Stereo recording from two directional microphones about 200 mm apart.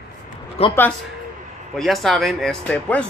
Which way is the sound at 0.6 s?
30° left (ahead or behind).